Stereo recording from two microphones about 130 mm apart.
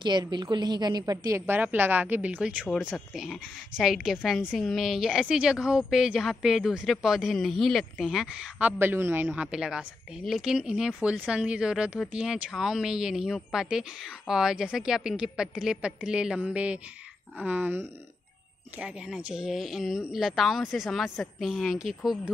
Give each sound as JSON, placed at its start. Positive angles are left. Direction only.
{"t": 0.0, "sound": "a woman's voice", "side_deg": -35}
{"t": 1.4, "sound": "a woman's voice", "side_deg": -15}